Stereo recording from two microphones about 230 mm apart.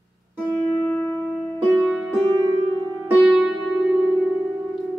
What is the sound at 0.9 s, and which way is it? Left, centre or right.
Music, centre.